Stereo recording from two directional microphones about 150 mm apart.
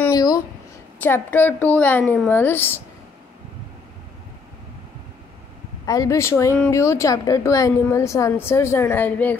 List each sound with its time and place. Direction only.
0.1 s a sound: 25° left (ahead or behind)
1.0 s a woman's voice: 10° left (ahead or behind)
5.9 s a woman's voice: 20° left (ahead or behind)